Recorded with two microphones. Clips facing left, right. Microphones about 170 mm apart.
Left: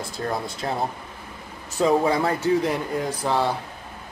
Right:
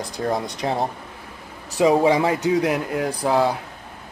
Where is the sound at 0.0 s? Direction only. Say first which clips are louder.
Right 4 dB; 15° right (ahead or behind).